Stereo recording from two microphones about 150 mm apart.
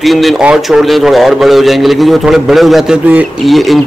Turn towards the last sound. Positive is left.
turn(degrees=0)  # may be behind; listen again after turning